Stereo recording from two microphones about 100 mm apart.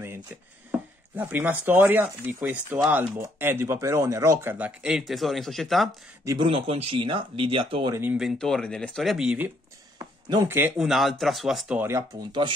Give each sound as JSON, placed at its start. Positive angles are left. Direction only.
{"t": 0.7, "sound": "speech", "side_deg": -20}
{"t": 6.3, "sound": "speech", "side_deg": -65}
{"t": 8.2, "sound": "speech", "side_deg": 0}
{"t": 9.9, "sound": "a sound", "side_deg": -40}
{"t": 10.8, "sound": "speech", "side_deg": 0}
{"t": 12.3, "sound": "speech", "side_deg": -50}